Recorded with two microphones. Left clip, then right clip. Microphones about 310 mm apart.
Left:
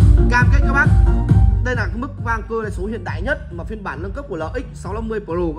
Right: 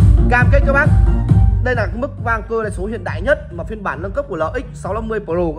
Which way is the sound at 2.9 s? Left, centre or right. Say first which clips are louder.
Right 6 dB; right.